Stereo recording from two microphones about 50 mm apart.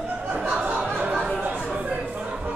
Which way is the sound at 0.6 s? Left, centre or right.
Right.